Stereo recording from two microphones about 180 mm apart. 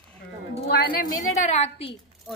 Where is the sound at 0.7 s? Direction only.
60° left (ahead or behind).